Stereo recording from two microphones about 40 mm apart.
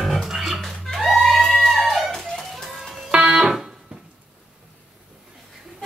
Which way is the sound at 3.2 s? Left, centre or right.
Centre.